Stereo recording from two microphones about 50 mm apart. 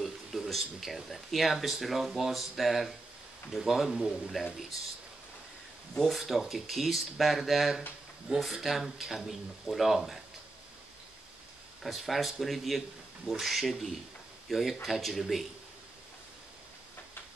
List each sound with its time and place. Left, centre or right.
0.5 s speech: centre
5.9 s speech: centre
8.3 s speech: centre
8.6 s speech: centre
11.8 s speech: centre